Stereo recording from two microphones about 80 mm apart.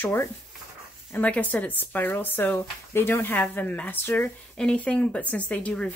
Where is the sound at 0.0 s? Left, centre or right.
Left.